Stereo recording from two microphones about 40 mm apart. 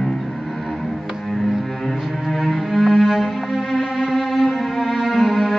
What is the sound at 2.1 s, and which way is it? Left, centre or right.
Cello, centre.